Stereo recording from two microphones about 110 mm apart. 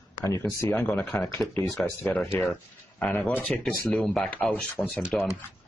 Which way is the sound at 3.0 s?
10° left (ahead or behind).